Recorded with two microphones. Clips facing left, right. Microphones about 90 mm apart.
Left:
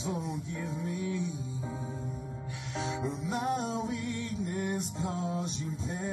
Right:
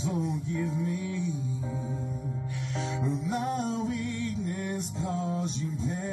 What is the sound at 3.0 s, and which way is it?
Music, 25° left (ahead or behind).